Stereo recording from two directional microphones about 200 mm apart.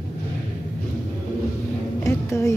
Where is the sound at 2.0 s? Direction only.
15° left (ahead or behind).